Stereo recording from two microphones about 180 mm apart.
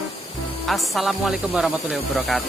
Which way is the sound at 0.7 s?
Centre (ahead or behind).